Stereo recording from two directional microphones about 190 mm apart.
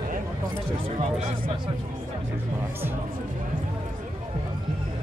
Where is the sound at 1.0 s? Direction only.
35° right (ahead or behind).